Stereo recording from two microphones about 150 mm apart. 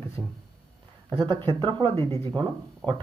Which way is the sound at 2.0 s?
15° left (ahead or behind).